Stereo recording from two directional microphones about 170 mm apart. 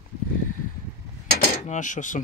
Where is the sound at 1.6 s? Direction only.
45° left (ahead or behind).